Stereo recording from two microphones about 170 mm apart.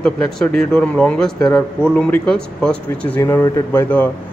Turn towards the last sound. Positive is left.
turn(degrees=10)  # may be behind; listen again after turning